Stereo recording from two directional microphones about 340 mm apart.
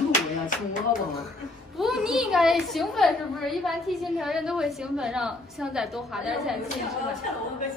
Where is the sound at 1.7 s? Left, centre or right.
Centre.